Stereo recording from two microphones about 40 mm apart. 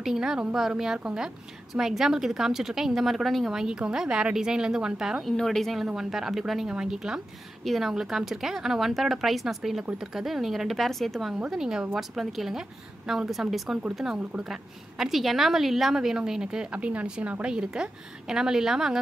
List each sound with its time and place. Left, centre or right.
0.0 s a woman's voice: centre
1.7 s a woman's voice: centre
3.5 s a woman's voice: centre
5.2 s a woman's voice: centre
5.9 s a woman's voice: centre
7.7 s speech: centre
8.1 s a woman's voice: centre
11.5 s a woman's voice: centre
14.0 s speech: right
14.5 s a woman's voice: centre; by 17.5 s right
17.5 s a woman's voice: centre